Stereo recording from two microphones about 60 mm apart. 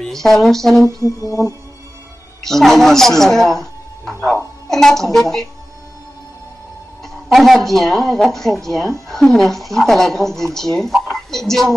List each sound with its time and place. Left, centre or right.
0.0 s speech: centre
0.8 s mantra: right
2.4 s speech: centre
7.2 s a woman's voice: centre